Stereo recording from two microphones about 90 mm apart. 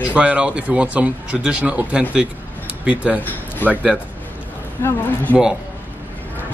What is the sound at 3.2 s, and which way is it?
Speech, 20° left (ahead or behind).